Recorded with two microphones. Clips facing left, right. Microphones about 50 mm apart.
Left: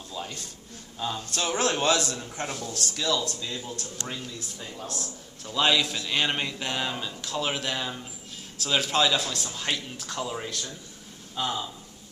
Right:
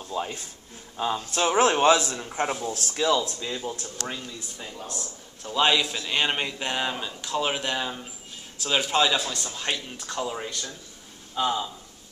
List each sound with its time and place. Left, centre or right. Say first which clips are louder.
0.1 s a man's voice: right 6 dB; right
4.1 s a man's voice: right 1 dB; centre